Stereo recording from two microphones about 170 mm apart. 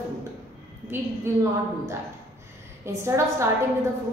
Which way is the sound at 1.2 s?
15° right (ahead or behind).